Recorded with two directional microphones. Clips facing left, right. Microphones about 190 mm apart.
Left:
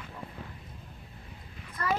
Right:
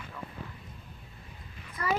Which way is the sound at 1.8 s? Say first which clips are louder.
Even; 10° right (ahead or behind).